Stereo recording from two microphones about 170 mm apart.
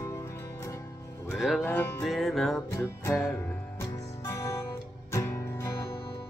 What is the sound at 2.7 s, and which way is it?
Music, 15° left (ahead or behind).